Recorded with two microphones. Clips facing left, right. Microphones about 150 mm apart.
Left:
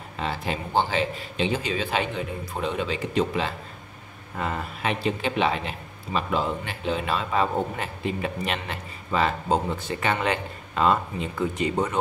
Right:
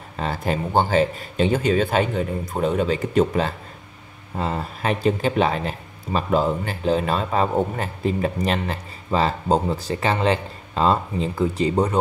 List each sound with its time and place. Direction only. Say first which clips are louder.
0.2 s speech: right 5 dB; 45° right (ahead or behind)
4.4 s speech: right 3 dB; 35° right (ahead or behind)